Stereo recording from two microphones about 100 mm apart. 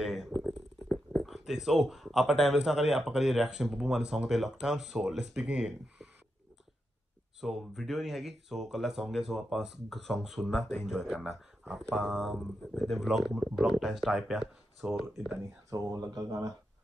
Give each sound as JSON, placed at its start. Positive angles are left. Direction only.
{"t": 0.0, "sound": "a sound", "side_deg": 0}
{"t": 1.2, "sound": "speech", "side_deg": 0}
{"t": 7.3, "sound": "speech", "side_deg": 0}
{"t": 15.7, "sound": "speech", "side_deg": -40}